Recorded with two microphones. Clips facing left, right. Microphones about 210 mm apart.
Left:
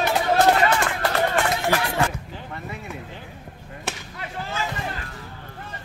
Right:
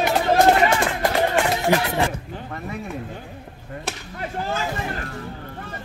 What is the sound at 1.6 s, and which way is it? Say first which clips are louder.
Speech: right 2 dB; 20° right (ahead or behind).